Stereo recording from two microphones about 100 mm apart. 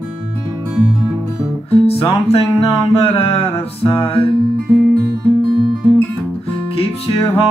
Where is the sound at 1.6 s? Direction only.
65° left (ahead or behind).